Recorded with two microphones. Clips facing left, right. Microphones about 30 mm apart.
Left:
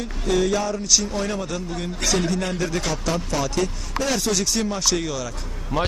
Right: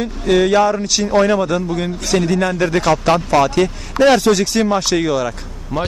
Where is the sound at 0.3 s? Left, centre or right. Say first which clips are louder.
Right 9 dB; right.